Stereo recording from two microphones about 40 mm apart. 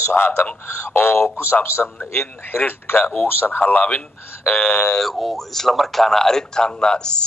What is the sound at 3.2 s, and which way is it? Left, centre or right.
Speech, left.